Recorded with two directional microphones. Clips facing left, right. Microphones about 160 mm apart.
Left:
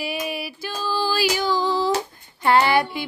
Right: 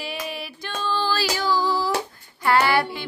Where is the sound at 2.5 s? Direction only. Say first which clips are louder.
Left 2 dB; 20° left (ahead or behind).